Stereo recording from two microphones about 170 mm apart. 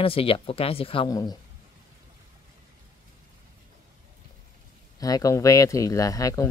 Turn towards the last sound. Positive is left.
turn(degrees=20)  # may be behind; listen again after turning